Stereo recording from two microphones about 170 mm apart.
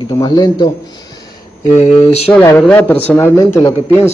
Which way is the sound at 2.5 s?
10° left (ahead or behind).